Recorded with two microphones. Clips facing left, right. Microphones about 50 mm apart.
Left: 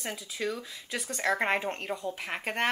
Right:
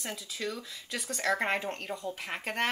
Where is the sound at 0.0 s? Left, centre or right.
Centre.